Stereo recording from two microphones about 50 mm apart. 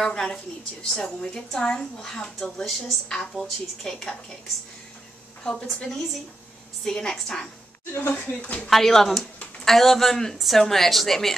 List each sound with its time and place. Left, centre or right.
0.0 s a woman's voice: centre
5.4 s a woman's voice: centre
8.1 s speech: left
8.6 s a woman's voice: centre